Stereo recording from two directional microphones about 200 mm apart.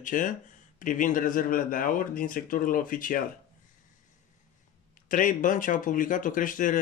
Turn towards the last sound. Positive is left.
turn(degrees=40)  # may be behind; listen again after turning